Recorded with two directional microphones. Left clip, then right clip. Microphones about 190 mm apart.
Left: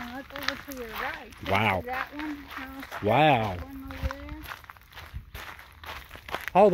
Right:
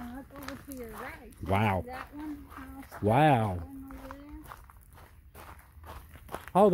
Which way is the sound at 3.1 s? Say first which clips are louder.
Left 3 dB; 20° right (ahead or behind).